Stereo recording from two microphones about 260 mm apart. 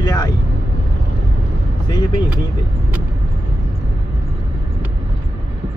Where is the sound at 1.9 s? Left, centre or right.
Centre.